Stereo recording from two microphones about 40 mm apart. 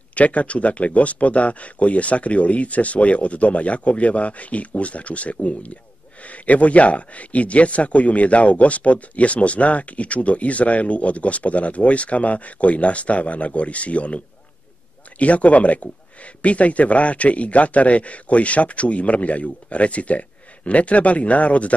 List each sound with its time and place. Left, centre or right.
0.1 s speech: left